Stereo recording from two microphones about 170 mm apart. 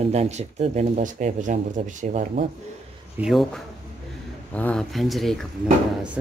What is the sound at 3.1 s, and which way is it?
Speech, centre (ahead or behind).